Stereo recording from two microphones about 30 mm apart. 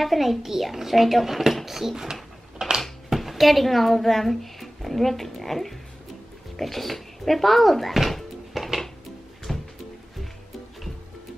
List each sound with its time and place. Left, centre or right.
0.0 s a child's voice: centre
2.6 s a sound: right
3.1 s a child's voice: centre
8.1 s music: centre
9.5 s music: centre